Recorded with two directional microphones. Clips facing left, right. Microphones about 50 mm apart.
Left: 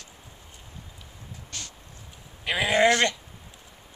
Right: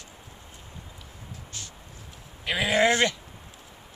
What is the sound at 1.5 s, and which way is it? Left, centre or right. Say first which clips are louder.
Music: left 4 dB; left.